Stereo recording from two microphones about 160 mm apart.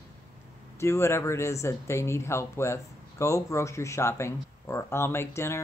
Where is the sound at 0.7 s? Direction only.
15° left (ahead or behind).